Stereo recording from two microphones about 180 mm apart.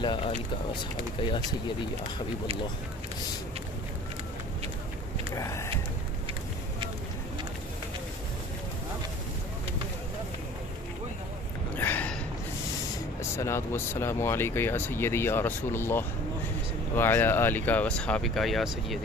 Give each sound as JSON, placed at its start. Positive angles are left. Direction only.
{"t": 0.0, "sound": "speech", "side_deg": 25}
{"t": 5.3, "sound": "speech", "side_deg": 15}
{"t": 11.7, "sound": "a sound", "side_deg": 10}
{"t": 13.4, "sound": "speech", "side_deg": 15}